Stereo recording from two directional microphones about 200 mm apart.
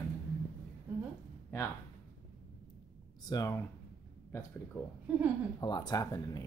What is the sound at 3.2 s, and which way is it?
Speech, 15° left (ahead or behind).